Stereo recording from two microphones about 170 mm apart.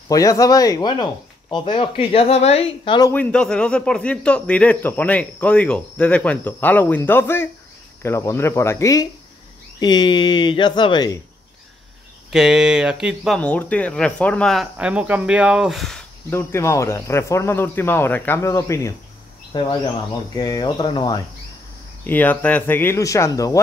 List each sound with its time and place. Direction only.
0.1 s speech: 20° left (ahead or behind)
3.1 s a man's voice: 10° left (ahead or behind); by 11.1 s 25° left (ahead or behind)
12.3 s speech: 5° right (ahead or behind)
16.3 s a man's voice: 15° left (ahead or behind)
22.0 s a man's voice: 10° left (ahead or behind)